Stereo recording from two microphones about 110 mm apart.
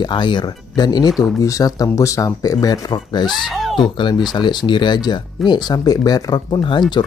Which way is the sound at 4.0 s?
40° left (ahead or behind).